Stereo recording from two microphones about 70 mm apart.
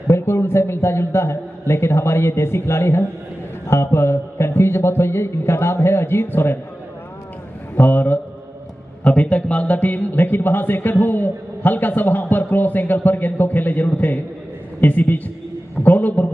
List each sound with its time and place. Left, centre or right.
0.0 s a man's voice: left
7.7 s a man's voice: left